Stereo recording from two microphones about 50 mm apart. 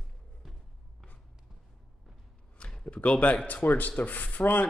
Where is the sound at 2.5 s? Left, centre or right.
Left.